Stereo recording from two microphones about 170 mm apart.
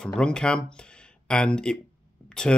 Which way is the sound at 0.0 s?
5° left (ahead or behind).